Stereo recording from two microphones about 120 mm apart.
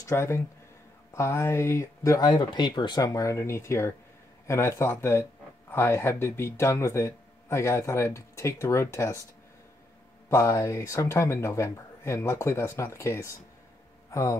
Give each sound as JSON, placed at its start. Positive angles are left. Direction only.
{"t": 0.0, "sound": "speech", "side_deg": 20}
{"t": 10.3, "sound": "speech", "side_deg": 25}